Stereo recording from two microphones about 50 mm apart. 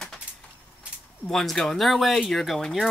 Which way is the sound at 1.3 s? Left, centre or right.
Centre.